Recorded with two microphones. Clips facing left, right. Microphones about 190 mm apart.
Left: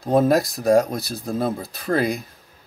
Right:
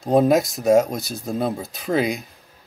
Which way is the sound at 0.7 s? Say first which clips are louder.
Right 1 dB; centre (ahead or behind).